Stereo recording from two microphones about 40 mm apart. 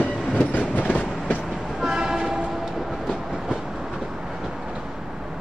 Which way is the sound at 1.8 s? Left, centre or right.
Centre.